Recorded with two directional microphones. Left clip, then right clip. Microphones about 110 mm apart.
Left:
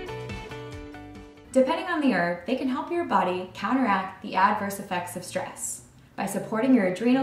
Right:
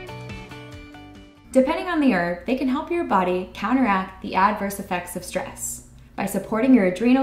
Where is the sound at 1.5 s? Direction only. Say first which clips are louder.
Right 3 dB; 35° right (ahead or behind).